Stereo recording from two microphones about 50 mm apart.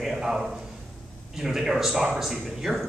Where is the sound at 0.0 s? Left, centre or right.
Centre.